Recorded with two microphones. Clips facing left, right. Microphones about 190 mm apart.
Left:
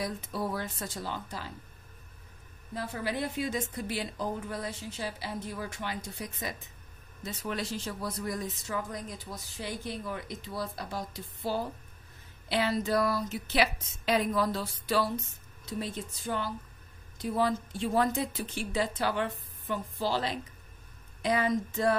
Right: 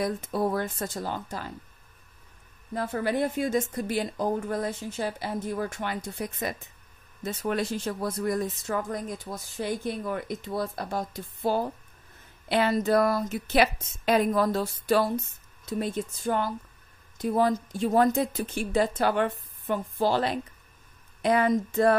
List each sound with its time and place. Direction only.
0.0 s speech: 50° right (ahead or behind)
2.7 s speech: 50° right (ahead or behind)